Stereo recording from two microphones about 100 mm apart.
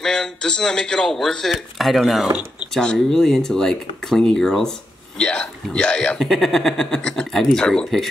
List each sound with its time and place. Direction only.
0.0 s speech: 5° left (ahead or behind)
2.2 s speech: 15° right (ahead or behind)
2.7 s speech: 5° left (ahead or behind)